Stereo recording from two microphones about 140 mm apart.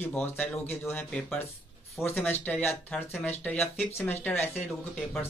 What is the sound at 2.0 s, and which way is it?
Speech, 5° right (ahead or behind).